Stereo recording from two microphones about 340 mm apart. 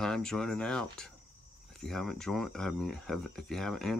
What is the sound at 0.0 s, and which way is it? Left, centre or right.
Speech, centre.